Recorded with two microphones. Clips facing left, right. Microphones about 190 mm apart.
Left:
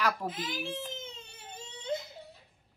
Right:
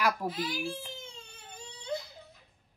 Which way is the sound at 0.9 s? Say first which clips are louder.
Left 3 dB; 20° left (ahead or behind).